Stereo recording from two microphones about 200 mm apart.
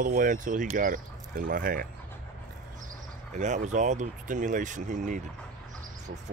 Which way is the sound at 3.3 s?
35° right (ahead or behind).